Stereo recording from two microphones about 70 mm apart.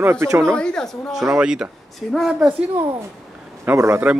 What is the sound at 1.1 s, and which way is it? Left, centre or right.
Speech, centre.